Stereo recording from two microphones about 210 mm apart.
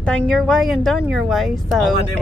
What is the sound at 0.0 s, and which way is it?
Speech, 5° left (ahead or behind).